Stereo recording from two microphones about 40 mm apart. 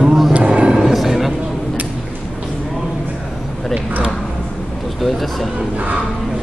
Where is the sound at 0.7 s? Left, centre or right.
Centre.